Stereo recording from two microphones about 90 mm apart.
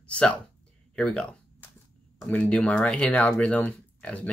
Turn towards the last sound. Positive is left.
turn(degrees=10)  # may be behind; listen again after turning